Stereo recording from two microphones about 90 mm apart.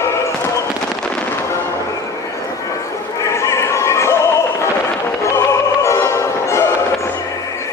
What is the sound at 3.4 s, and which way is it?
Music, 35° left (ahead or behind).